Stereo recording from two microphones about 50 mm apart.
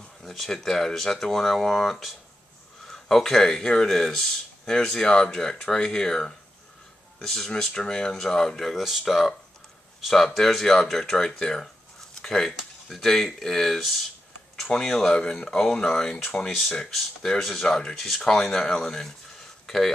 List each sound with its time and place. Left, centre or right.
0.2 s speech: centre
18.5 s speech: centre
19.6 s a sound: centre